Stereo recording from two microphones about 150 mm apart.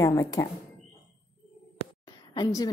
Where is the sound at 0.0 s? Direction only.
25° left (ahead or behind).